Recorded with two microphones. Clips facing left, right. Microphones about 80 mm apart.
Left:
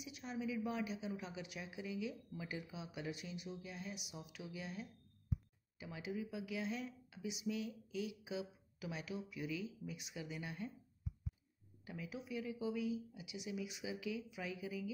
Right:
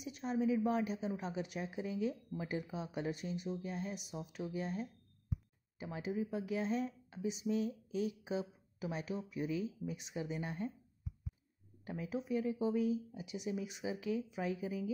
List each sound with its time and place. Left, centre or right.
0.0 s speech: right
11.8 s speech: right